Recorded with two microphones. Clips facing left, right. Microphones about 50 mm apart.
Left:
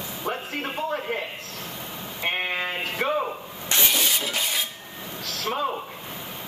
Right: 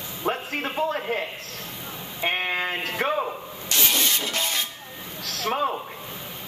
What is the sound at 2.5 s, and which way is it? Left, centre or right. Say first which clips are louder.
Speech: right 1 dB; right.